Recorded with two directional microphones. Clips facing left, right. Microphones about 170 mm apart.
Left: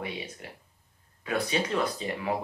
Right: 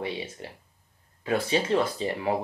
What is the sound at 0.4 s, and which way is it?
Speech, 30° right (ahead or behind).